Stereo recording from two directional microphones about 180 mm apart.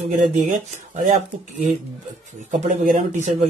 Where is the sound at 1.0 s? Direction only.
40° right (ahead or behind).